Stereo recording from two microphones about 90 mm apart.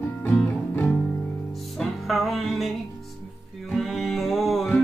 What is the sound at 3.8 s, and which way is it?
Music, 5° left (ahead or behind).